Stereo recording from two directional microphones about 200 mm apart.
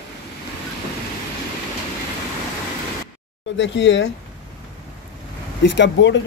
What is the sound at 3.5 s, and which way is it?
Speech, 65° left (ahead or behind).